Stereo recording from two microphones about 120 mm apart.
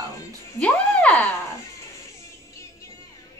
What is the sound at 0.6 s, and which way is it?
Speech, 10° left (ahead or behind).